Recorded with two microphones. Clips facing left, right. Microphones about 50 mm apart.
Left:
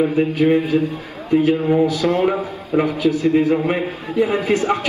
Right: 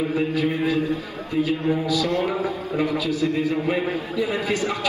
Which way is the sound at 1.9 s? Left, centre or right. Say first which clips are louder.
Left 5 dB; left.